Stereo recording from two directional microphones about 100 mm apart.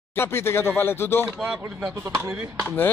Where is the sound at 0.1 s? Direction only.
25° left (ahead or behind).